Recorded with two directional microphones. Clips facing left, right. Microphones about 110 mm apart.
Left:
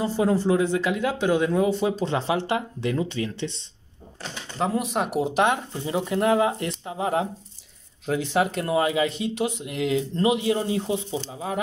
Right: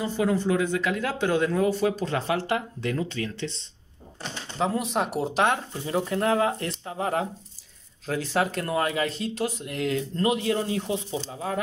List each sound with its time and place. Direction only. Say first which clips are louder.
0.0 s speech: left 3 dB; 35° left (ahead or behind)
1.0 s speech: left 2 dB; 15° left (ahead or behind)
4.6 s speech: left 1 dB; 5° left (ahead or behind)